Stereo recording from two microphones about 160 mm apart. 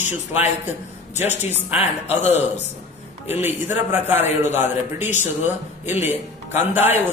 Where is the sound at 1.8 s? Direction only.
40° left (ahead or behind).